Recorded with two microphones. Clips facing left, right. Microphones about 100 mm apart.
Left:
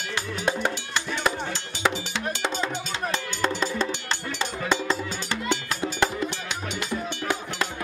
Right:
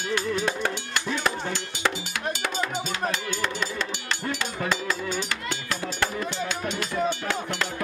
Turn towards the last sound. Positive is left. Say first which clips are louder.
# left 2 dB
turn(degrees=25)  # may be behind; listen again after turning